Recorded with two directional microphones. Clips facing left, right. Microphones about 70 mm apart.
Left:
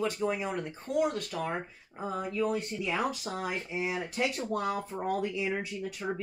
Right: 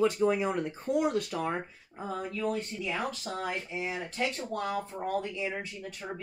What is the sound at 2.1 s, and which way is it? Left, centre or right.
Speech, centre.